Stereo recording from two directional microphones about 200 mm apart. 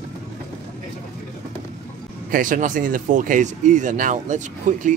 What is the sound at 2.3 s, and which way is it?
Speech, 40° right (ahead or behind).